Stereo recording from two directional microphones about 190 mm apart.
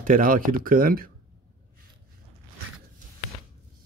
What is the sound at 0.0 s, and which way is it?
Speech, 45° right (ahead or behind).